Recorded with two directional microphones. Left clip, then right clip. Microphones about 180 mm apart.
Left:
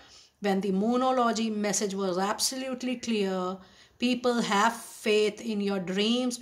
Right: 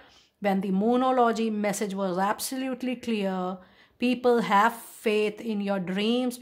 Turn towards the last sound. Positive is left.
turn(degrees=-40)  # may be behind; listen again after turning